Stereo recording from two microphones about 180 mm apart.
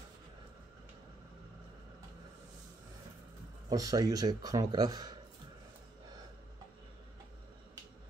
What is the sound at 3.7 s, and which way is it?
Speech, 20° right (ahead or behind).